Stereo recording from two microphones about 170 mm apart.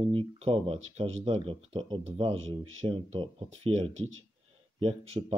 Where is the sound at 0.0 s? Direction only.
30° right (ahead or behind).